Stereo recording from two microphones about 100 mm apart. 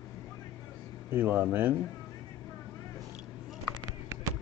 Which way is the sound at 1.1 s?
20° right (ahead or behind).